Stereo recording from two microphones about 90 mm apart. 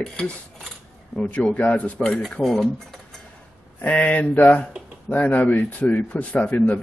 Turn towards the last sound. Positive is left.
turn(degrees=15)  # may be behind; listen again after turning